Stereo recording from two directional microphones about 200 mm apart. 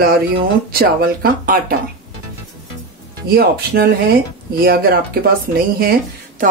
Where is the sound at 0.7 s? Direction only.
50° right (ahead or behind).